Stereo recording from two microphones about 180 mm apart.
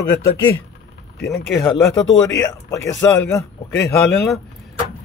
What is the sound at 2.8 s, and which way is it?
Speech, 80° left.